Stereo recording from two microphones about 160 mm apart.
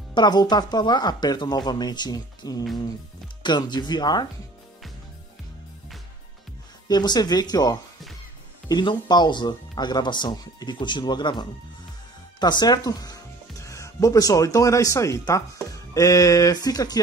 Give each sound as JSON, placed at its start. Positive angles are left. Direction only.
{"t": 0.1, "sound": "speech", "side_deg": 25}
{"t": 6.9, "sound": "speech", "side_deg": 25}